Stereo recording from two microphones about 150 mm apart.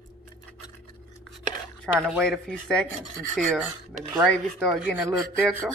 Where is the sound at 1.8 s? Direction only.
Centre (ahead or behind).